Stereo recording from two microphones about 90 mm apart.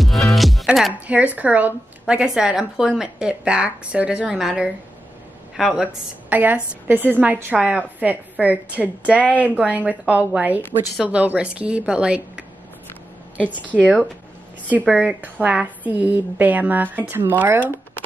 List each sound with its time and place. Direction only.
0.0 s music: centre (ahead or behind)
0.9 s a woman's voice: 15° right (ahead or behind)
6.3 s a woman's voice: 15° right (ahead or behind)
13.7 s speech: 15° left (ahead or behind)
14.9 s a woman's voice: 10° right (ahead or behind)